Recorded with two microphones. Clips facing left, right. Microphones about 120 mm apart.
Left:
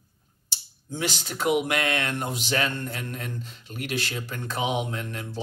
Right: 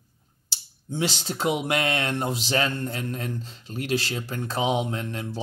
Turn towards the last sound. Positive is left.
turn(degrees=-30)  # may be behind; listen again after turning